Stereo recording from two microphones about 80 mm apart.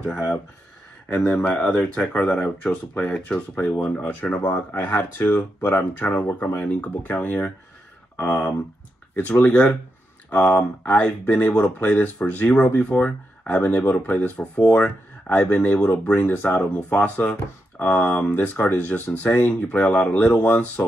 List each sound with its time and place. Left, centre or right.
1.0 s speech: left
1.5 s speech: centre